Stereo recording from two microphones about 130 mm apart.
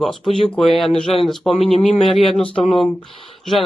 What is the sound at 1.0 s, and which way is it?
Speech, 50° left (ahead or behind).